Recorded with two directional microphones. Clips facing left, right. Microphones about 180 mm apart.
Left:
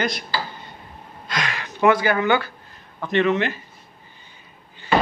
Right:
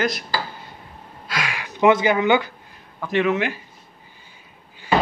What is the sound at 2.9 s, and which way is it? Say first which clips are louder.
Speech: left 1 dB; 5° right (ahead or behind).